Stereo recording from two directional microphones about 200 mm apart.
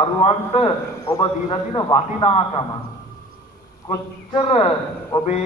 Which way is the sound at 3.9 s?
25° left (ahead or behind).